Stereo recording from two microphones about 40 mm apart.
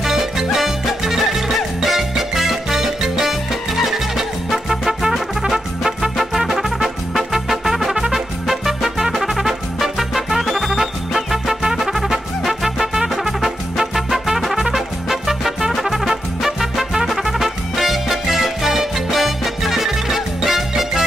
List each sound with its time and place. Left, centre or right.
0.0 s music: centre